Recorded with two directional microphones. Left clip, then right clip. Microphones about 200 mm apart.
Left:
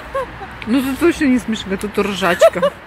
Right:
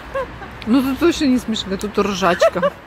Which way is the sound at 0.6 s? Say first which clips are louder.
Right 1 dB; 10° right (ahead or behind).